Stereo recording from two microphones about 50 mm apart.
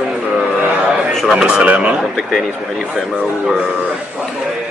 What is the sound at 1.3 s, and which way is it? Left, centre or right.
Speech, centre.